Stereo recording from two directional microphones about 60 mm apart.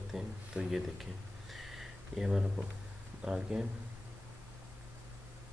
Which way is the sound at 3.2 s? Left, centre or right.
Centre.